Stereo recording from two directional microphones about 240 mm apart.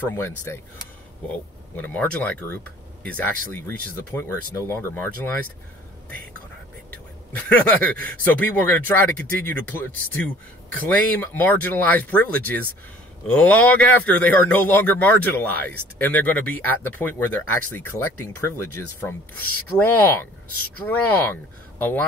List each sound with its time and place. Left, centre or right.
1.3 s speech: centre
6.9 s speech: centre
19.8 s speech: centre